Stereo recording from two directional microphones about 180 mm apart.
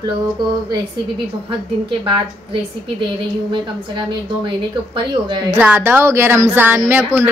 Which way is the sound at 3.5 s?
25° right (ahead or behind).